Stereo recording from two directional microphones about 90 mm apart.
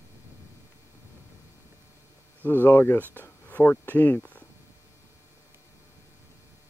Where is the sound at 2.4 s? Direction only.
20° left (ahead or behind).